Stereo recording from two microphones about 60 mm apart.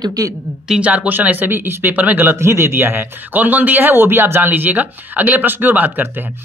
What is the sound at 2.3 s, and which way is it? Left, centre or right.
Speech, right.